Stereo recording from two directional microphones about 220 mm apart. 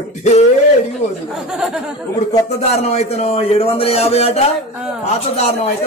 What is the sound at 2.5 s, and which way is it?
Speech, 30° left (ahead or behind).